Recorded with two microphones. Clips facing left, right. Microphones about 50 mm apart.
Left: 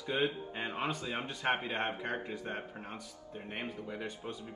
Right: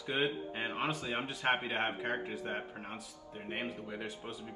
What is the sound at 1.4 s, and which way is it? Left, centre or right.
Speech, right.